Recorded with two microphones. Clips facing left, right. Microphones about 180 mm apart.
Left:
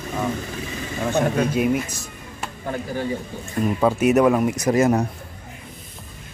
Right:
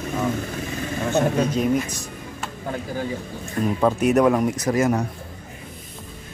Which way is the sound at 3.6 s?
5° left (ahead or behind).